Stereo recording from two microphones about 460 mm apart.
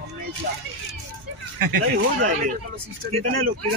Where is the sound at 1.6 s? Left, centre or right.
Right.